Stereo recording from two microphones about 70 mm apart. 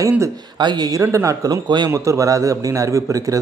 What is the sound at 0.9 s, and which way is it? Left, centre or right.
Speech, right.